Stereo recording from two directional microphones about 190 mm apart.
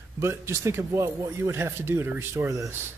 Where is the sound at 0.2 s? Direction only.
15° right (ahead or behind).